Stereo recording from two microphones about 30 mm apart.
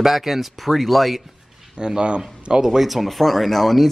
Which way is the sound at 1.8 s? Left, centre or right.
Right.